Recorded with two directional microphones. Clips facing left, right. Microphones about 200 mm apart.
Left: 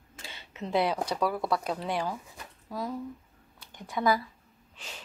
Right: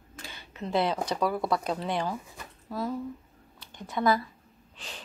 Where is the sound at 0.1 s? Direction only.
25° left (ahead or behind).